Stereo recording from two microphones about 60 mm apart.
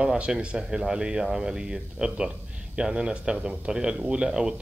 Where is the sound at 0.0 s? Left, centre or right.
Centre.